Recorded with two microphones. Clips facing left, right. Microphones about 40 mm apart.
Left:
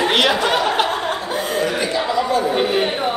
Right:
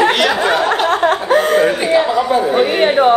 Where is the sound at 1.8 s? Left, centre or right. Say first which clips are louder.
Right 7 dB; right.